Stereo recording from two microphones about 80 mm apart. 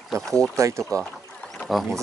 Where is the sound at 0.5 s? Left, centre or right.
Right.